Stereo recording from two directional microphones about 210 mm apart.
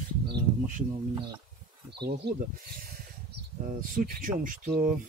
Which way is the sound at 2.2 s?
55° right (ahead or behind).